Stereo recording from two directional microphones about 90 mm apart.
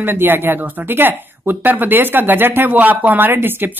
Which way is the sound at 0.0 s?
25° right (ahead or behind).